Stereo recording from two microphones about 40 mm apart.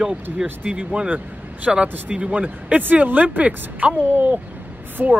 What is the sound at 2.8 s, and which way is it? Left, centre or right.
Speech, right.